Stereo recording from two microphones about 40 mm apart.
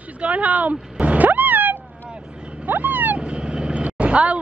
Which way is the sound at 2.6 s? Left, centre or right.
Right.